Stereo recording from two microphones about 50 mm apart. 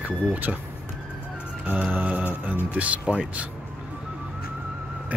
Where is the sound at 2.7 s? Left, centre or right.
Right.